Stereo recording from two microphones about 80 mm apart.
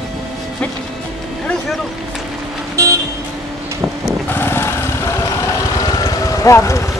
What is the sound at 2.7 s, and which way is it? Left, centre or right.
Vehicle, right.